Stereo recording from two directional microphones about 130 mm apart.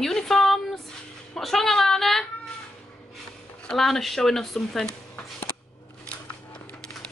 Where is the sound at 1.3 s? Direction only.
Centre (ahead or behind).